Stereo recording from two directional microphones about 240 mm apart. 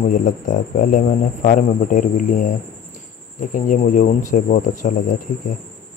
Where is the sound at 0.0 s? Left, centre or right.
Left.